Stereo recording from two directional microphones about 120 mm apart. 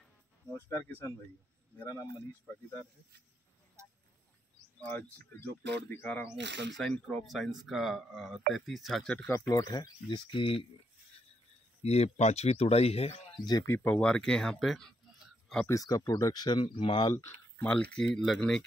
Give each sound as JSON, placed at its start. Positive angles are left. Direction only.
{"t": 0.7, "sound": "speech", "side_deg": 15}
{"t": 4.8, "sound": "speech", "side_deg": 15}
{"t": 6.8, "sound": "speech", "side_deg": 5}
{"t": 9.5, "sound": "speech", "side_deg": 30}
{"t": 11.8, "sound": "speech", "side_deg": 60}
{"t": 13.4, "sound": "speech", "side_deg": 30}
{"t": 13.7, "sound": "speech", "side_deg": 15}
{"t": 15.6, "sound": "speech", "side_deg": 30}
{"t": 17.1, "sound": "speech", "side_deg": 20}